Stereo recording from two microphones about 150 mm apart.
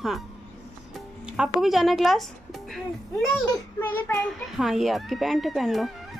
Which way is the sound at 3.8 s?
10° left (ahead or behind).